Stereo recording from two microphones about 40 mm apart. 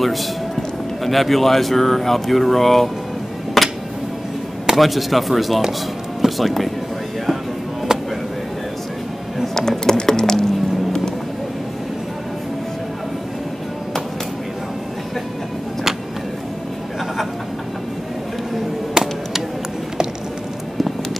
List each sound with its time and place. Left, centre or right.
0.0 s speech: centre
3.6 s music: centre
4.7 s speech: centre
9.6 s music: centre
19.0 s a sound: centre